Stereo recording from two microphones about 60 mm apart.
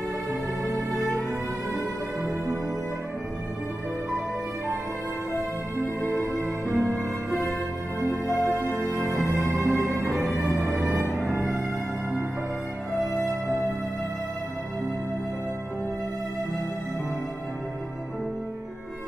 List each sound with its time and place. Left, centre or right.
0.3 s music: right
6.7 s music: right
8.4 s music: left
9.1 s music: right
13.3 s music: right